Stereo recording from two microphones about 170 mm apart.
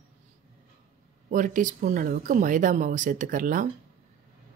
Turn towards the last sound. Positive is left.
turn(degrees=-50)  # may be behind; listen again after turning